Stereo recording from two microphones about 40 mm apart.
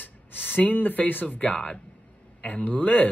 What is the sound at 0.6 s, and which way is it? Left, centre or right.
Speech, left.